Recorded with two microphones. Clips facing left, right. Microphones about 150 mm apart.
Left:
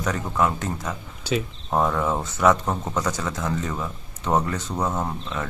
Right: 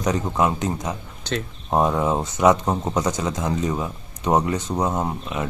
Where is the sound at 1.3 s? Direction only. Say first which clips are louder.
Left 2 dB; 5° left (ahead or behind).